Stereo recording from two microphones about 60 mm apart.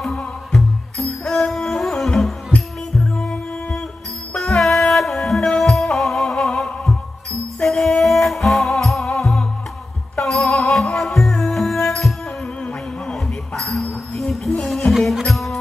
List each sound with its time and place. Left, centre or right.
0.5 s music: centre
10.3 s music: centre
14.9 s music: centre